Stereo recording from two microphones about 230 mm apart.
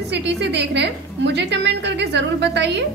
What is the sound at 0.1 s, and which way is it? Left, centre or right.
A woman's voice, right.